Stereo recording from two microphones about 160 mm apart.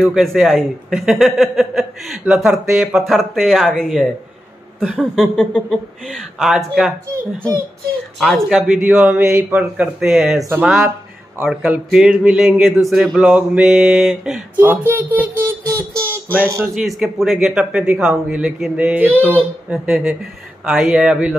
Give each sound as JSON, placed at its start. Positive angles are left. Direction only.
{"t": 0.0, "sound": "a man's voice", "side_deg": 0}
{"t": 8.2, "sound": "a man's voice", "side_deg": 0}
{"t": 14.6, "sound": "speech", "side_deg": -15}
{"t": 16.7, "sound": "a man's voice", "side_deg": 0}